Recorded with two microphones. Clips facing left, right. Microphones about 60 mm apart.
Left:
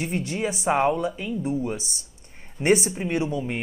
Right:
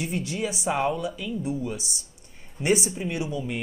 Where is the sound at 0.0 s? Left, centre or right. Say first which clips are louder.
Left 2 dB; left.